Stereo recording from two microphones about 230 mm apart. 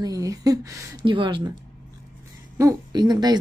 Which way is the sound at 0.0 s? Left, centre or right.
Centre.